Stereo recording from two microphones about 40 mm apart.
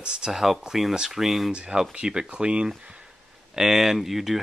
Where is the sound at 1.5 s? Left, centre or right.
Right.